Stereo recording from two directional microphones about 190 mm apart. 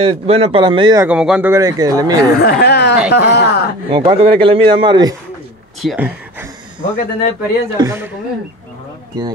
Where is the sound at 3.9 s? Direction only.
25° right (ahead or behind).